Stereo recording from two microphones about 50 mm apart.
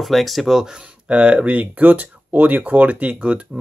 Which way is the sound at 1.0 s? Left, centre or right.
Right.